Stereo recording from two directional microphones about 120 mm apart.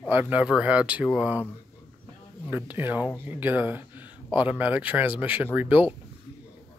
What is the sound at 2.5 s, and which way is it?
Speech, 15° right (ahead or behind).